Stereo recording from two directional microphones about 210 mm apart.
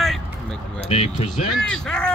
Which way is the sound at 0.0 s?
Centre (ahead or behind).